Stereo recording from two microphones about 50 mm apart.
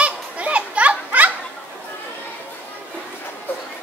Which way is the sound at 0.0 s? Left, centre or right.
Right.